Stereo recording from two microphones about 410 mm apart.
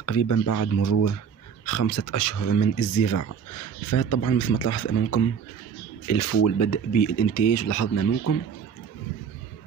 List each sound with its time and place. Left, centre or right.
0.0 s speech: left